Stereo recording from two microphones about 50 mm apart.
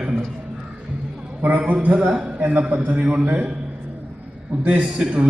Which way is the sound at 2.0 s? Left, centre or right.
Centre.